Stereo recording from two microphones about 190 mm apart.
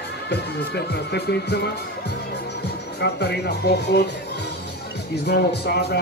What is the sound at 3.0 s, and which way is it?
Speech, 60° left (ahead or behind).